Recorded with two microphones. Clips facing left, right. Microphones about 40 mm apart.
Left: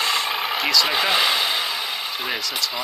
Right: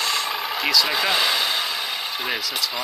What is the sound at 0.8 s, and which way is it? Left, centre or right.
Speech, centre.